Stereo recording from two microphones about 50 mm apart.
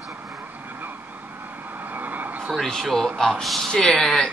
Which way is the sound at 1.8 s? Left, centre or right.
Right.